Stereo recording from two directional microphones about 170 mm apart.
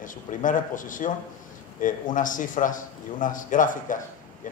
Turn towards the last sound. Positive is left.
turn(degrees=50)  # may be behind; listen again after turning